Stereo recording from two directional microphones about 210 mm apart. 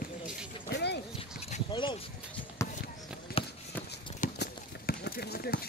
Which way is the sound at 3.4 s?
25° left (ahead or behind).